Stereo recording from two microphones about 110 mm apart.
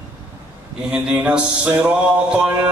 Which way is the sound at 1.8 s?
10° right (ahead or behind).